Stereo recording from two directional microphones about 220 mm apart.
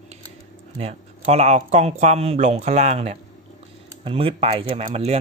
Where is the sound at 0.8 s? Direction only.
30° right (ahead or behind).